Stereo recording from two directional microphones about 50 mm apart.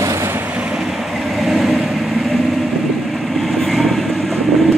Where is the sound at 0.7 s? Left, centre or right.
Centre.